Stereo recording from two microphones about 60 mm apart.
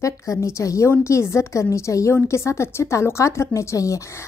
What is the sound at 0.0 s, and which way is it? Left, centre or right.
Speech, left.